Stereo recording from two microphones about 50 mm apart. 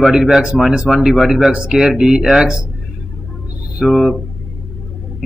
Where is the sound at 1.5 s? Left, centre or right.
Centre.